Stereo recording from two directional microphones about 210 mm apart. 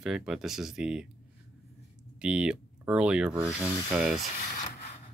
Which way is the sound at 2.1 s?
5° right (ahead or behind).